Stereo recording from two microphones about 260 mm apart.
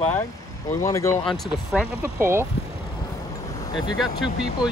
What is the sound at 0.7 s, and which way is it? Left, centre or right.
Speech, centre.